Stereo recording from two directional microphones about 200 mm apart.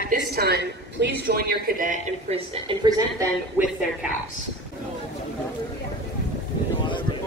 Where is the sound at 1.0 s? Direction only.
50° right (ahead or behind).